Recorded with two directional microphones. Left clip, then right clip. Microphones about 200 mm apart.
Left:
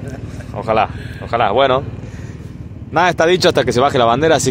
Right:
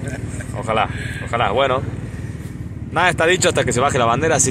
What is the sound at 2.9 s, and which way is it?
Speech, 55° left (ahead or behind).